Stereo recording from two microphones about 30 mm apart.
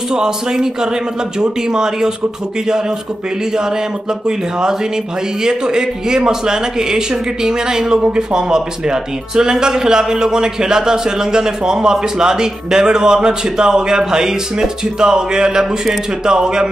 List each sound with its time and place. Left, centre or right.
0.1 s speech: right
5.4 s speech: right